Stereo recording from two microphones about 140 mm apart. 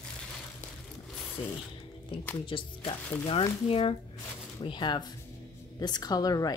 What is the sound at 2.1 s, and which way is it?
A woman's voice, 40° left (ahead or behind).